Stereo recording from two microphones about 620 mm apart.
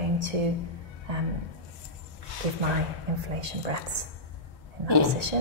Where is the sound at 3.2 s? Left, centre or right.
Right.